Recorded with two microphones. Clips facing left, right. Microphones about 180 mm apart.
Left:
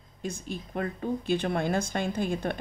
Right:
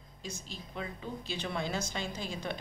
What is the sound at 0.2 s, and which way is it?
Speech, 55° left (ahead or behind).